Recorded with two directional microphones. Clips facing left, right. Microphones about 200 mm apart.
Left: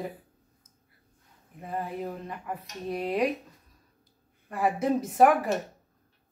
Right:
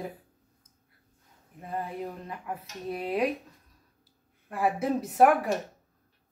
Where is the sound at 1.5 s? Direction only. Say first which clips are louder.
Left 1 dB; centre (ahead or behind).